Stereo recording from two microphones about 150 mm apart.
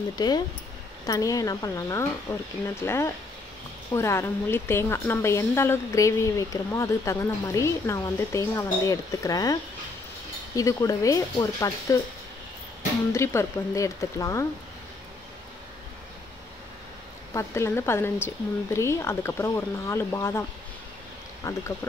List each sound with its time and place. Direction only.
0.1 s a woman's voice: 30° left (ahead or behind)
13.1 s a woman's voice: 20° left (ahead or behind)
17.3 s speech: 20° left (ahead or behind)
21.4 s a woman's voice: 20° left (ahead or behind)